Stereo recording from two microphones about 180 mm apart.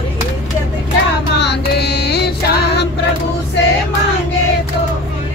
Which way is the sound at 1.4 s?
70° left (ahead or behind).